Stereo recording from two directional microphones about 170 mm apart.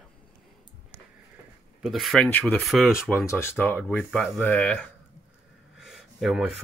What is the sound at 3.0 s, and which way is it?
Speech, 15° left (ahead or behind).